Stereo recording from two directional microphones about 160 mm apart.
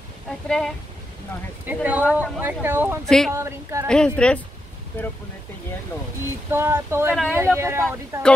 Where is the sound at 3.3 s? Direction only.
15° right (ahead or behind).